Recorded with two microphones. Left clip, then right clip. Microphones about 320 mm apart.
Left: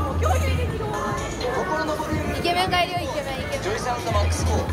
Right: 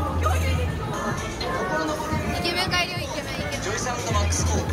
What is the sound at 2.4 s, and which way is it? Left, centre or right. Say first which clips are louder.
Music: left 4 dB; left.